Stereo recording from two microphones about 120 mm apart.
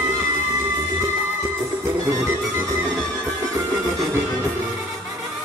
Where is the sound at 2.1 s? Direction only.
25° right (ahead or behind).